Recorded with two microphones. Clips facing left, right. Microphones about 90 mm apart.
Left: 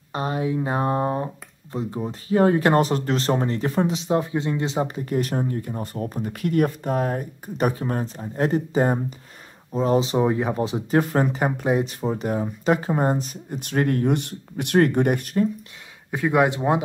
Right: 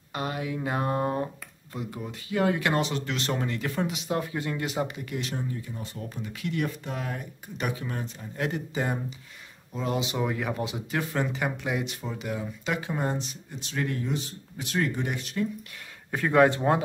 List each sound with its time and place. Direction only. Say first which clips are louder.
0.1 s speech: left 7 dB; 30° left (ahead or behind); by 15.4 s 50° left (ahead or behind)
16.1 s speech: left 1 dB; 15° left (ahead or behind)